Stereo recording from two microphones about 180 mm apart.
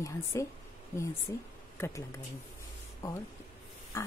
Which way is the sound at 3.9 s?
15° left (ahead or behind).